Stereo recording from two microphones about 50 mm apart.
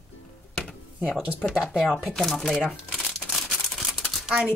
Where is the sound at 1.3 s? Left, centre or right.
Centre.